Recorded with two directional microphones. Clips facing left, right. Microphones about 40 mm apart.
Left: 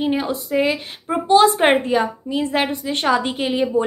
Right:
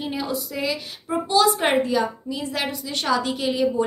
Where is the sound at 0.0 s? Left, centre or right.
Left.